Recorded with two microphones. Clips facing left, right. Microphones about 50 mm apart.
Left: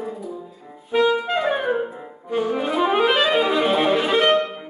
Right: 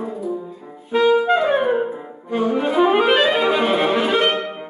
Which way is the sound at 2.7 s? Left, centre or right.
Centre.